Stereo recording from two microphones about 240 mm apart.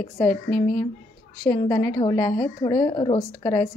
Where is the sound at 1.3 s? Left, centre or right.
Centre.